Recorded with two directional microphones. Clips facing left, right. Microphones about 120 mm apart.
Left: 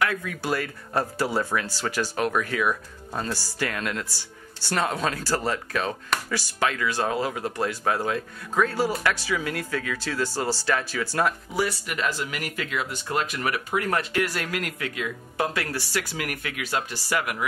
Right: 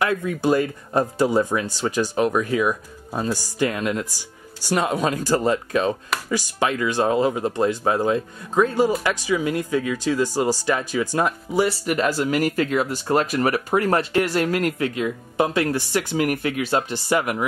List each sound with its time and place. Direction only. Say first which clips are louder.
0.0 s speech: right 6 dB; 25° right (ahead or behind)
11.8 s speech: right 7 dB; 40° right (ahead or behind)
15.4 s speech: right 7 dB; 20° right (ahead or behind)